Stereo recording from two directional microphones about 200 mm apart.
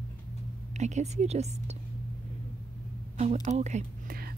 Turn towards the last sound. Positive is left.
turn(degrees=-35)  # may be behind; listen again after turning